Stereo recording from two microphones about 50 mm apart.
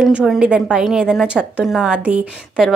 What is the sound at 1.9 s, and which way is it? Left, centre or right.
Speech, right.